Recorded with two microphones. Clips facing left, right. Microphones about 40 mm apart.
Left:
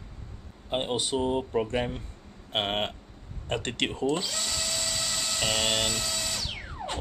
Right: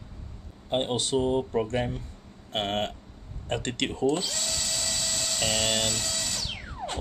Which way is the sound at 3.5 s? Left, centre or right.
Centre.